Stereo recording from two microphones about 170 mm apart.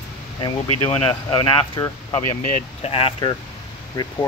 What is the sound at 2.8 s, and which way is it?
Speech, 35° left (ahead or behind).